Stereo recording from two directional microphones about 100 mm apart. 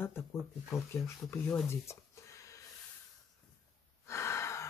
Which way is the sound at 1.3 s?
15° left (ahead or behind).